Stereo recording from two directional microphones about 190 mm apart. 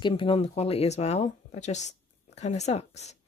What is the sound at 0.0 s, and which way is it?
Speech, 30° left (ahead or behind).